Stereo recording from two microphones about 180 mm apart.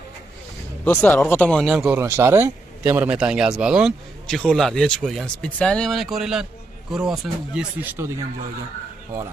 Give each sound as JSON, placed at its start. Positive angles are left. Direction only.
{"t": 0.8, "sound": "speech", "side_deg": 10}
{"t": 2.0, "sound": "speech", "side_deg": -15}